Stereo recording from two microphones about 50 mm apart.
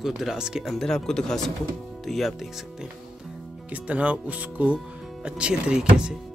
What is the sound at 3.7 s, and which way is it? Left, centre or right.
Speech, right.